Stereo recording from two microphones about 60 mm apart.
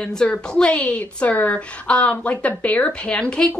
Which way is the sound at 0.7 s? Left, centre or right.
Left.